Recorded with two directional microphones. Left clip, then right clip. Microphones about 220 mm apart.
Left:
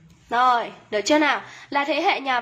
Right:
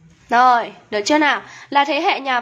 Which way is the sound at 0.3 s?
20° right (ahead or behind).